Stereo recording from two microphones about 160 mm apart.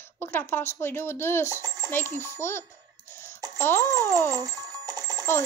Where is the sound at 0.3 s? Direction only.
15° left (ahead or behind).